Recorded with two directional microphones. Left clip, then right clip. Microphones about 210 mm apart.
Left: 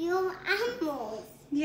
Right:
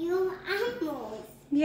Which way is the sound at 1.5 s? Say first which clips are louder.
Right 4 dB; 10° left (ahead or behind).